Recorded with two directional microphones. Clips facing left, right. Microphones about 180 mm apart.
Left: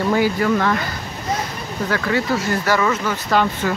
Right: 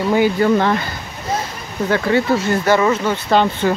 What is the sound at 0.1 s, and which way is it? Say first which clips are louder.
Speech: right 5 dB; 25° right (ahead or behind).